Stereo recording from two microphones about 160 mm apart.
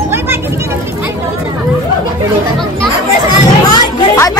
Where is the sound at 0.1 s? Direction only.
15° right (ahead or behind).